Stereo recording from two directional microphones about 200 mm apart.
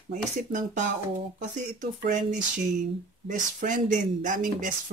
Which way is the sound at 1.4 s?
40° right (ahead or behind).